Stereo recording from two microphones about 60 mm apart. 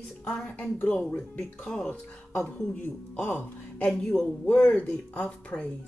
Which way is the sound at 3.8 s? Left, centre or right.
Centre.